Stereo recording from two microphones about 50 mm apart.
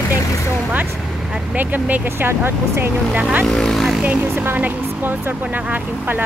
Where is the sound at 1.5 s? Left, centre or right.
Right.